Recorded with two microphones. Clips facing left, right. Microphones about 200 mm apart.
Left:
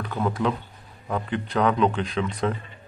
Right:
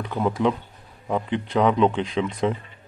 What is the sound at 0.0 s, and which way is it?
Speech, 20° right (ahead or behind).